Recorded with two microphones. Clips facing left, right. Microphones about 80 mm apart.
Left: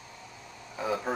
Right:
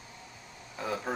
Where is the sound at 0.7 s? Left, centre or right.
Centre.